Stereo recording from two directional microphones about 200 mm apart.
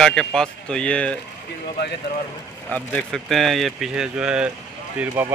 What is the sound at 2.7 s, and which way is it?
Speech, 5° left (ahead or behind).